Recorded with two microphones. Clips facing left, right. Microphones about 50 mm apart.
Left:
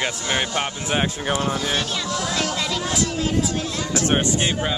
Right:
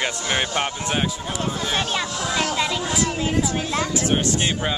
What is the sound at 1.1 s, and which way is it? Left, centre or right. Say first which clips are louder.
Speech: left 4 dB; left.